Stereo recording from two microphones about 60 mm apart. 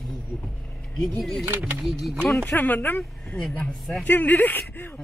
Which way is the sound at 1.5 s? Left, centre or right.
Right.